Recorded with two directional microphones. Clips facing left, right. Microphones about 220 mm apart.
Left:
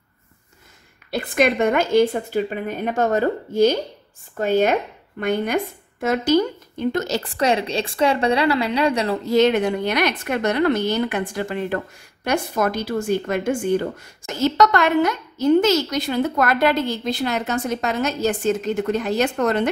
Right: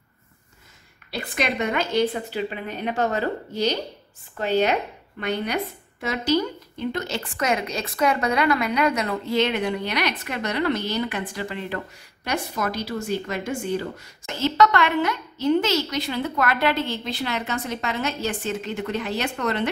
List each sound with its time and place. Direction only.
1.1 s a woman's voice: 50° left (ahead or behind)